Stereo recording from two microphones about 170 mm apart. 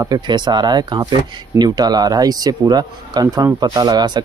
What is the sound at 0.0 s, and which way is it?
Speech, 25° right (ahead or behind).